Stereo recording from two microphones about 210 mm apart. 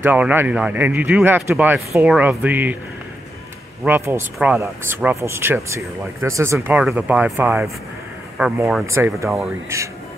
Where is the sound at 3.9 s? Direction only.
10° right (ahead or behind).